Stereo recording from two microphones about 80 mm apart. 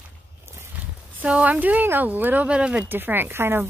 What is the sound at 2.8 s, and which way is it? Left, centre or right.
Speech, right.